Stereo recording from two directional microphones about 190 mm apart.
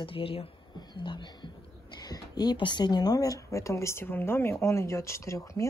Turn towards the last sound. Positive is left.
turn(degrees=15)  # may be behind; listen again after turning